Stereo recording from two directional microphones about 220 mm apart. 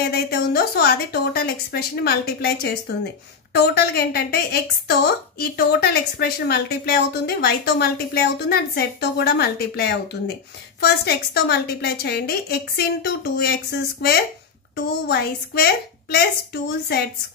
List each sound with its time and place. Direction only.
0.0 s a woman's voice: 45° left (ahead or behind)